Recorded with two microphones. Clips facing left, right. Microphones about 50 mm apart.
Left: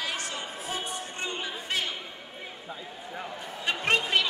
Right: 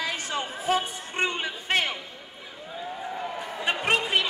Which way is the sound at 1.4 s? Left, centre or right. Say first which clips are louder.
Right 5 dB; right.